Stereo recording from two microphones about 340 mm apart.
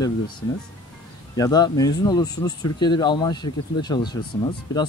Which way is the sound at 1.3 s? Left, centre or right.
Centre.